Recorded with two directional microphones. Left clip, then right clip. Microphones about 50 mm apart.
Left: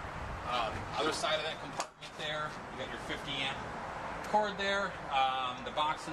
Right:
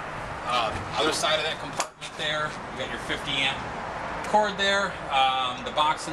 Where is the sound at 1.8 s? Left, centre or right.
Centre.